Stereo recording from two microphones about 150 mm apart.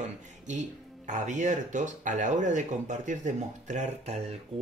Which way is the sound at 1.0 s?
55° right (ahead or behind).